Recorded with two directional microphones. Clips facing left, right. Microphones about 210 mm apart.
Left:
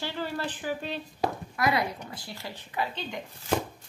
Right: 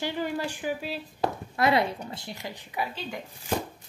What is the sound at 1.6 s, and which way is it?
A woman's voice, 25° right (ahead or behind).